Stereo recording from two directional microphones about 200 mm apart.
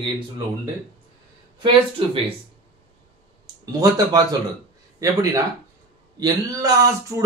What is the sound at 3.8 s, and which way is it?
Speech, 20° right (ahead or behind).